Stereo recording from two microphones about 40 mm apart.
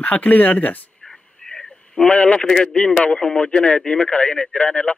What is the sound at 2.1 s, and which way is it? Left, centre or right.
Speech, left.